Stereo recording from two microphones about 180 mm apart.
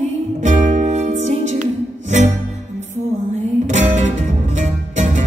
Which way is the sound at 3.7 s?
40° right (ahead or behind).